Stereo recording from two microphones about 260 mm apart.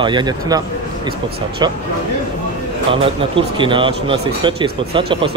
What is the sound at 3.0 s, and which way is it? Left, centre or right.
Speech, centre.